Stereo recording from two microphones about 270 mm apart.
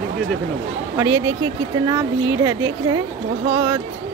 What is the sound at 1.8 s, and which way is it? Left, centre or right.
Speech, centre.